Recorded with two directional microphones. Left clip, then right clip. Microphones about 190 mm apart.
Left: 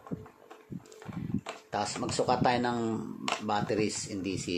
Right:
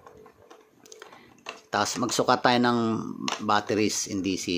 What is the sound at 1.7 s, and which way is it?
Speech, 30° right (ahead or behind).